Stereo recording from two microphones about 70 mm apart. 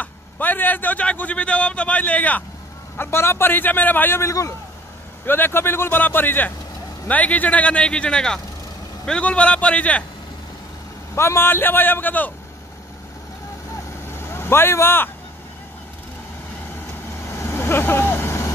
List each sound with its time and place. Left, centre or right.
0.0 s a man's voice: left
3.0 s a man's voice: left
4.2 s a man's voice: left
5.2 s a man's voice: left
11.1 s a man's voice: left
14.0 s vehicle: left
17.2 s vehicle: left